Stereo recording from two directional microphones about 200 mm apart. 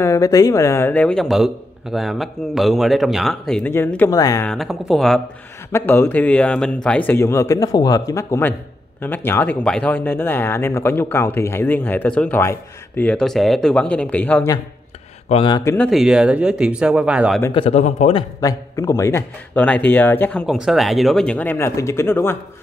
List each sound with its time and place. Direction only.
0.0 s a man's voice: 15° left (ahead or behind)
4.5 s a man's voice: centre (ahead or behind)
5.7 s speech: 15° left (ahead or behind)
15.2 s speech: 25° left (ahead or behind)
15.9 s a man's voice: centre (ahead or behind)
17.5 s speech: 30° left (ahead or behind)
18.4 s speech: 15° left (ahead or behind)